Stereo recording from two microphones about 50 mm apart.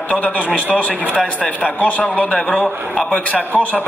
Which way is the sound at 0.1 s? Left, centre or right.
Left.